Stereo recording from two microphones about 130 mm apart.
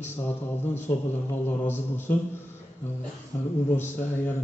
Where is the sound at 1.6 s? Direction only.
15° left (ahead or behind).